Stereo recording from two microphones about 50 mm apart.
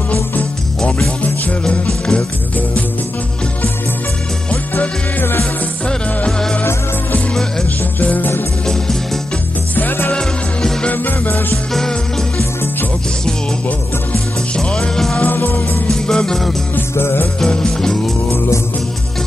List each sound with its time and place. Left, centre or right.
1.9 s music: centre
5.4 s music: left
8.0 s music: left
8.6 s music: centre
9.8 s music: left
10.1 s music: centre
10.9 s music: left
11.5 s music: centre
14.5 s music: centre
15.2 s music: left
15.9 s music: centre
16.9 s music: left
17.4 s music: centre